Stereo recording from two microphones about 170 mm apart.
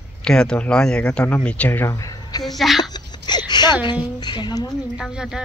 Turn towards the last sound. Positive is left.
turn(degrees=-5)  # may be behind; listen again after turning